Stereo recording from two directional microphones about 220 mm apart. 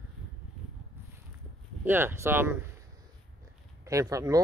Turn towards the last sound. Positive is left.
turn(degrees=-15)  # may be behind; listen again after turning